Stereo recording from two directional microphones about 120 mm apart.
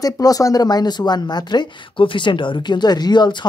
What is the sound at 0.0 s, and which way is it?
Speech, 30° left (ahead or behind).